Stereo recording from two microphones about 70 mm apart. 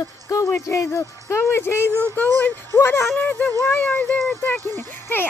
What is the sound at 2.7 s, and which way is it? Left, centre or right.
A woman's voice, left.